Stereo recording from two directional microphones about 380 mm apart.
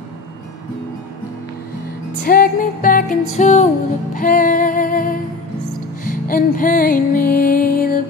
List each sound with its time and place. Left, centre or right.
2.2 s music: left